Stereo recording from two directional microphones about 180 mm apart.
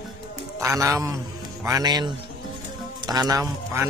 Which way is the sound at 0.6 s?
15° right (ahead or behind).